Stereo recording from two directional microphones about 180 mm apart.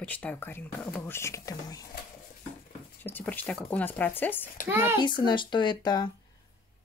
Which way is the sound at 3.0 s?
10° left (ahead or behind).